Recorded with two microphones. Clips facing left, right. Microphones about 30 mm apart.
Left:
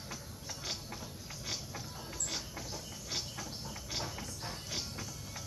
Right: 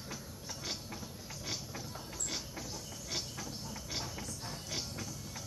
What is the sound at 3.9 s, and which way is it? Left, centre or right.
Mechanisms, centre.